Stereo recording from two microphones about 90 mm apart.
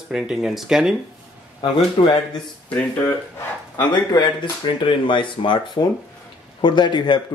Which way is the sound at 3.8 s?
55° left (ahead or behind).